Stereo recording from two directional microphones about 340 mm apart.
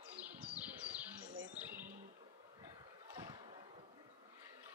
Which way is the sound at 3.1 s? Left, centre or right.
Centre.